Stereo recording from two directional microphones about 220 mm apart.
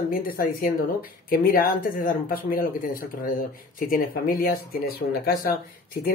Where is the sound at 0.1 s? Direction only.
40° left (ahead or behind).